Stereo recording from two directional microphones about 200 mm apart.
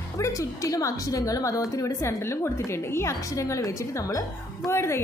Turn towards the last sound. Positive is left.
turn(degrees=15)  # may be behind; listen again after turning